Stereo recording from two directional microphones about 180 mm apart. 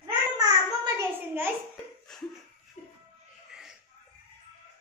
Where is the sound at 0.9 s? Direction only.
10° right (ahead or behind).